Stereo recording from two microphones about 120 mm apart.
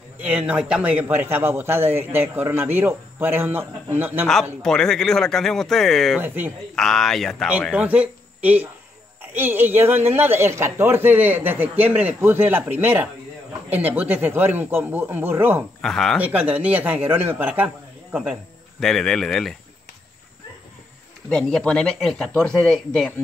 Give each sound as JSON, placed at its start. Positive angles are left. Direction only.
{"t": 0.2, "sound": "a man's voice", "side_deg": -10}
{"t": 4.6, "sound": "speech", "side_deg": 5}
{"t": 6.1, "sound": "a man's voice", "side_deg": -15}
{"t": 6.7, "sound": "speech", "side_deg": 5}
{"t": 7.7, "sound": "a man's voice", "side_deg": -10}
{"t": 15.8, "sound": "speech", "side_deg": 5}
{"t": 16.2, "sound": "a man's voice", "side_deg": -10}
{"t": 18.8, "sound": "speech", "side_deg": 5}
{"t": 21.3, "sound": "speech", "side_deg": 5}